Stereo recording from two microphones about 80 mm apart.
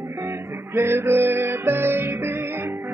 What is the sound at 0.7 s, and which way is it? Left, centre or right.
Music, right.